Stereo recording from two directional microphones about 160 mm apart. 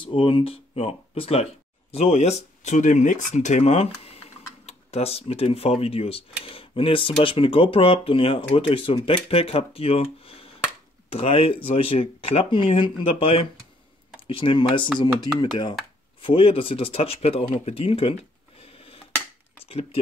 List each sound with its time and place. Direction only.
0.0 s speech: 30° left (ahead or behind)
18.6 s a sound: 35° left (ahead or behind)
19.7 s speech: 35° left (ahead or behind)